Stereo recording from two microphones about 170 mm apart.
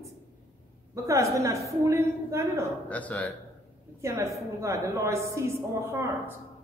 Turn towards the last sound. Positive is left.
turn(degrees=-15)  # may be behind; listen again after turning